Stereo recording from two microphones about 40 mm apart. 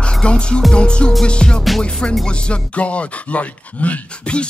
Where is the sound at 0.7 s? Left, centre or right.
Left.